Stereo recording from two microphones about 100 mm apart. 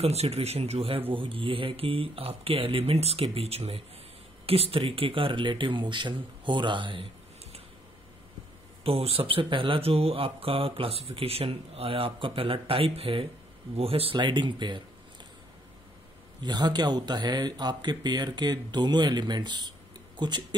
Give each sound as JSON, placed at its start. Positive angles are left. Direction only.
{"t": 0.0, "sound": "speech", "side_deg": -90}
{"t": 1.1, "sound": "speech", "side_deg": -60}
{"t": 8.8, "sound": "speech", "side_deg": -75}
{"t": 16.4, "sound": "speech", "side_deg": -45}